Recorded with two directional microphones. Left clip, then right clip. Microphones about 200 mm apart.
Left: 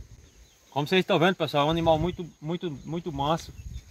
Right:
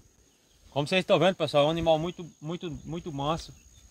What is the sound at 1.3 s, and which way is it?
Speech, 20° right (ahead or behind).